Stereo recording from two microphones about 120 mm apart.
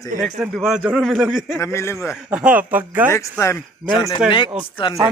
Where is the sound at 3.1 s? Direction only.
25° left (ahead or behind).